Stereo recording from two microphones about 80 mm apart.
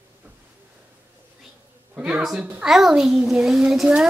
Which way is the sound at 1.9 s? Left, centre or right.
Centre.